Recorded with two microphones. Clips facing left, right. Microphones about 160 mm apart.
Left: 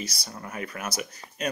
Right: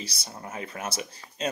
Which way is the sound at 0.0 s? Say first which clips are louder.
Left 2 dB; 25° right (ahead or behind).